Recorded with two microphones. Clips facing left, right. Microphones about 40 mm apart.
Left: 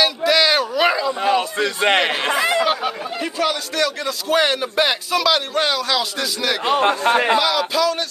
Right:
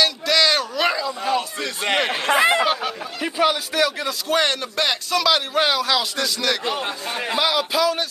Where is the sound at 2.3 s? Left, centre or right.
Right.